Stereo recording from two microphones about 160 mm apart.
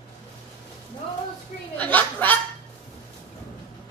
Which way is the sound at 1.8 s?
10° left (ahead or behind).